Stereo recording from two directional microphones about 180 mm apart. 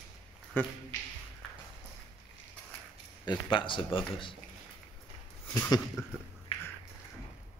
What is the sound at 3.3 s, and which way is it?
Speech, 25° left (ahead or behind).